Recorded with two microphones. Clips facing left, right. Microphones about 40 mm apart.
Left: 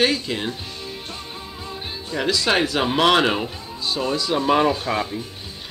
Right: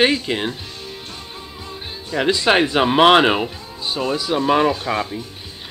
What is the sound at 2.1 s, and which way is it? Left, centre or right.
Speech, right.